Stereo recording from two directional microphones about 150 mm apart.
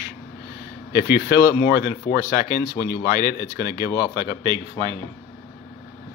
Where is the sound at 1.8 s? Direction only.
90° left.